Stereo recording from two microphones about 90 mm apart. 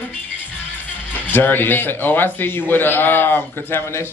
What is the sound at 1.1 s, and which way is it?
A man's voice, 20° left (ahead or behind).